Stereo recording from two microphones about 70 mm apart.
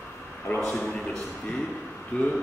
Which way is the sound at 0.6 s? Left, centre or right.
Centre.